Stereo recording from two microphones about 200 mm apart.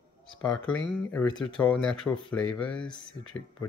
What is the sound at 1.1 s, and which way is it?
Speech, 15° left (ahead or behind).